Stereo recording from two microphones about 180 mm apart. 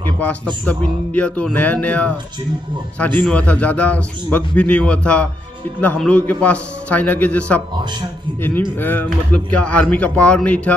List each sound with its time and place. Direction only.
0.2 s a man's voice: 10° left (ahead or behind)